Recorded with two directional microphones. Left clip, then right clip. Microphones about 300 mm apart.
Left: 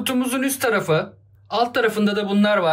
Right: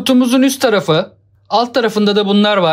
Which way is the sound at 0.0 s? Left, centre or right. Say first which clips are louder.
Right 10 dB; centre.